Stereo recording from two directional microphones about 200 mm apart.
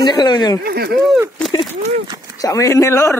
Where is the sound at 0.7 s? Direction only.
50° right (ahead or behind).